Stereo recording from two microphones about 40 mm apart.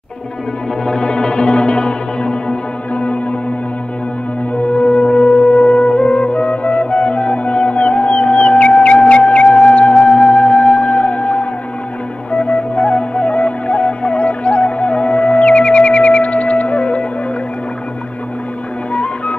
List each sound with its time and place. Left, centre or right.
0.8 s music: left
2.9 s gong: left
4.8 s music: left